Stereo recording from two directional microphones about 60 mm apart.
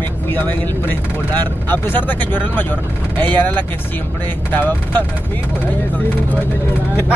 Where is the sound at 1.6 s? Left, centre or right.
Left.